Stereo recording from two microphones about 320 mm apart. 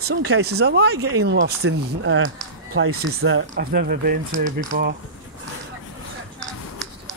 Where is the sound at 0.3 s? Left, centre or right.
Right.